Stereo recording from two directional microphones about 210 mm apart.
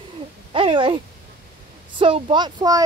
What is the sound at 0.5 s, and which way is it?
Speech, 25° right (ahead or behind).